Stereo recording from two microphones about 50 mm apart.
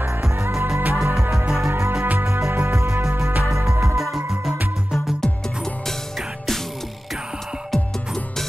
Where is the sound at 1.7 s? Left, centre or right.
Right.